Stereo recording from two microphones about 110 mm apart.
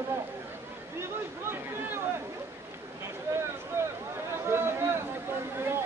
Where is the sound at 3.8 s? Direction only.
20° right (ahead or behind).